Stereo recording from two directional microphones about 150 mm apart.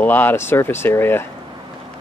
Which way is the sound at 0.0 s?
15° left (ahead or behind).